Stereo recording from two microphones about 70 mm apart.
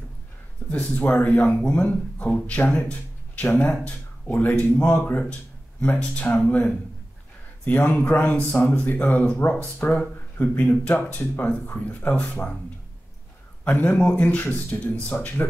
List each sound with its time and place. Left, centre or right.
0.7 s speech: left
13.7 s speech: left